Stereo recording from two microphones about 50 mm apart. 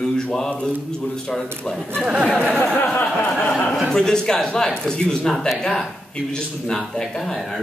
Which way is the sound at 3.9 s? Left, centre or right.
Centre.